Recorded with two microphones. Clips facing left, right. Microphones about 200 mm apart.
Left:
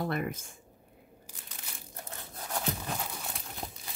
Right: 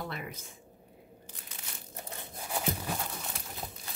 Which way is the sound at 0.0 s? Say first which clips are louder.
Left 7 dB; 50° left (ahead or behind).